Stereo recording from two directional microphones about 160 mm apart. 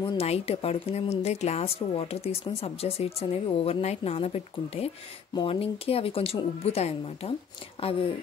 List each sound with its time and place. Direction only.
0.2 s a woman's voice: 40° left (ahead or behind)